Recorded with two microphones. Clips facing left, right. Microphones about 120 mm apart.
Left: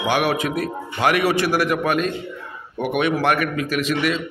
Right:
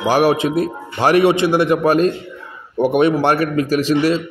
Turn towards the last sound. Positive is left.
turn(degrees=-35)  # may be behind; listen again after turning